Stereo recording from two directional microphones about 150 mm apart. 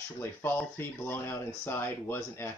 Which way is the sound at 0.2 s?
15° left (ahead or behind).